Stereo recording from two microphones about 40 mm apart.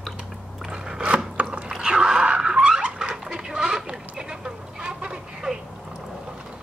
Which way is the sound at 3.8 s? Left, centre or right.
Centre.